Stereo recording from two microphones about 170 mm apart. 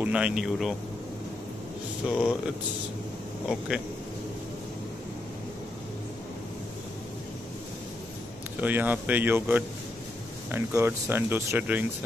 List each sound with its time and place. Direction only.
0.0 s speech: 5° right (ahead or behind)
2.0 s speech: 5° right (ahead or behind)
3.4 s speech: 5° right (ahead or behind)
8.5 s speech: 10° right (ahead or behind)